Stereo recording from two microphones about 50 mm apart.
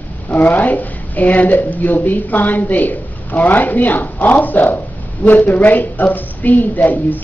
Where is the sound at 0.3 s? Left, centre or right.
Left.